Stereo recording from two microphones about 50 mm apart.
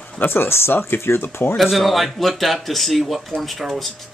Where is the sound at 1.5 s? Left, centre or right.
Centre.